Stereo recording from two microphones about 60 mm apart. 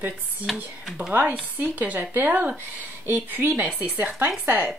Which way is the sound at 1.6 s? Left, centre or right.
Right.